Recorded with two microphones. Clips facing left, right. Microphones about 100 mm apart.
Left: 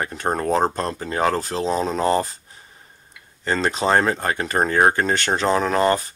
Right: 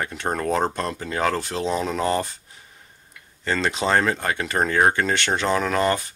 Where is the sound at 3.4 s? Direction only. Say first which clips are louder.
Left 2 dB; 35° left (ahead or behind).